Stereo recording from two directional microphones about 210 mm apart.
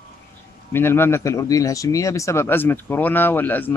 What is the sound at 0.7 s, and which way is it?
Speech, 10° left (ahead or behind).